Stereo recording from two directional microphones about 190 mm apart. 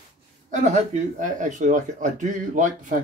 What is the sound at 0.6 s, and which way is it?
Speech, 40° right (ahead or behind).